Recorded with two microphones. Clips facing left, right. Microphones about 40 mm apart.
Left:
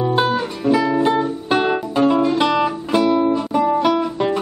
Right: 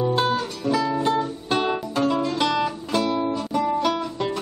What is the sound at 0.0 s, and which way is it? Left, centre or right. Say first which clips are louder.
Music: left 4 dB; left.